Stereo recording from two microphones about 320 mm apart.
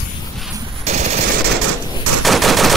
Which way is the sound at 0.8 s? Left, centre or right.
Right.